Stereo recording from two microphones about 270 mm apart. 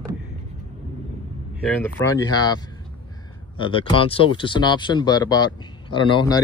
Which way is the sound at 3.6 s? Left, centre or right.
Centre.